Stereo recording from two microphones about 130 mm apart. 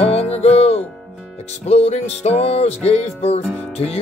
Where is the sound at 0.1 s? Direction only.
55° left (ahead or behind).